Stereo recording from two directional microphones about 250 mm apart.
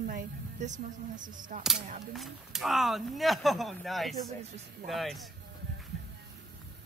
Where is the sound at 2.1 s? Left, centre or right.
Centre.